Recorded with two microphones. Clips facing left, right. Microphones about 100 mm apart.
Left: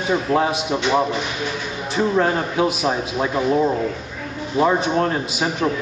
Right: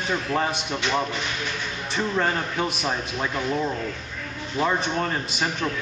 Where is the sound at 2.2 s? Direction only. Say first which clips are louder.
Left 5 dB; 5° left (ahead or behind).